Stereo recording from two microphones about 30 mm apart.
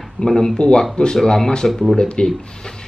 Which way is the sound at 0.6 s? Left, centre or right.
Left.